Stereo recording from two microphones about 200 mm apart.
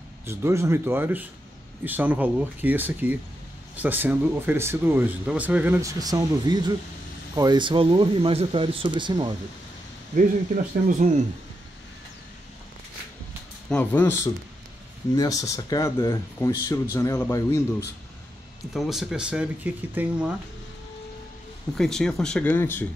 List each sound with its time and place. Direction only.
0.3 s speech: 15° right (ahead or behind)
10.1 s speech: 40° right (ahead or behind)
13.7 s speech: 10° left (ahead or behind)
18.7 s speech: centre (ahead or behind)
21.7 s speech: 5° left (ahead or behind)